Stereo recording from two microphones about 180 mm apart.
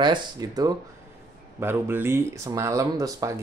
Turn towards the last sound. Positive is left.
turn(degrees=-20)  # may be behind; listen again after turning